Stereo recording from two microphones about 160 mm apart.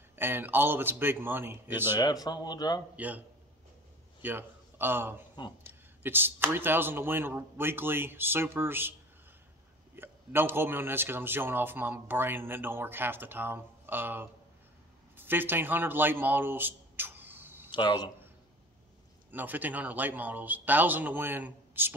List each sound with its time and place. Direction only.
0.1 s speech: 15° right (ahead or behind)
2.0 s speech: 25° left (ahead or behind)
3.0 s a man's voice: 10° right (ahead or behind)
9.9 s speech: 15° right (ahead or behind)
17.6 s speech: 30° left (ahead or behind)
19.3 s speech: 10° right (ahead or behind)